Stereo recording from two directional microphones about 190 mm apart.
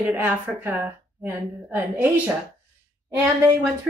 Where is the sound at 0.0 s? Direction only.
10° right (ahead or behind).